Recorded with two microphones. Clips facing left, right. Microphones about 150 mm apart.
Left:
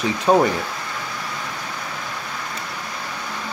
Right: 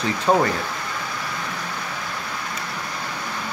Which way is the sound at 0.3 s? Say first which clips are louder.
Left 3 dB; 15° left (ahead or behind).